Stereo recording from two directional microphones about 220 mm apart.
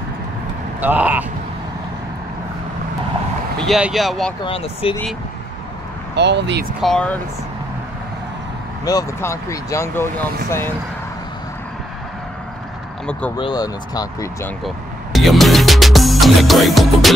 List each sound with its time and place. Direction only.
0.7 s speech: 5° right (ahead or behind)
3.5 s speech: centre (ahead or behind)
4.5 s speech: 25° left (ahead or behind)
6.1 s speech: 50° right (ahead or behind)
6.8 s speech: 5° left (ahead or behind)
8.8 s speech: 15° left (ahead or behind)
13.4 s speech: 20° left (ahead or behind)
15.1 s music: centre (ahead or behind)